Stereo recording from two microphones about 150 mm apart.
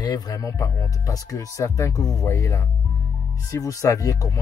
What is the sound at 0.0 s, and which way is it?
Speech, 25° left (ahead or behind).